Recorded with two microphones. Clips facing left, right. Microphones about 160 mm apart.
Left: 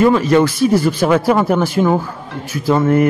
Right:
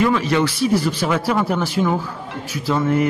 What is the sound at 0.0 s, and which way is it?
Speech, 45° left (ahead or behind).